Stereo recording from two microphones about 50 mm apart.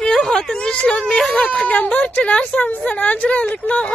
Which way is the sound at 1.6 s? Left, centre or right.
Left.